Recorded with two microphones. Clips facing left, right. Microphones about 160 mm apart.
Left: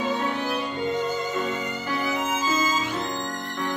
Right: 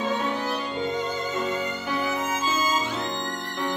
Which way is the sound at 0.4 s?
5° left (ahead or behind).